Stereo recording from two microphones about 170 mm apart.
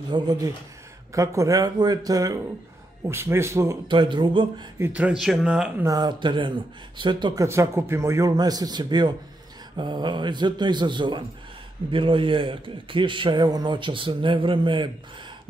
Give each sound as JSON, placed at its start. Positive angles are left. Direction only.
{"t": 0.1, "sound": "a man's voice", "side_deg": -25}
{"t": 3.8, "sound": "a man's voice", "side_deg": -30}
{"t": 4.7, "sound": "speech", "side_deg": -10}
{"t": 5.9, "sound": "a man's voice", "side_deg": -25}
{"t": 7.4, "sound": "a man's voice", "side_deg": -15}